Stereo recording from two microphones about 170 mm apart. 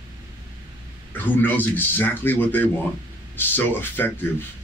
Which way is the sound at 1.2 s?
10° left (ahead or behind).